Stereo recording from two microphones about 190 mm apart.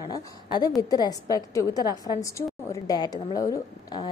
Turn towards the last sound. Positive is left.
turn(degrees=20)  # may be behind; listen again after turning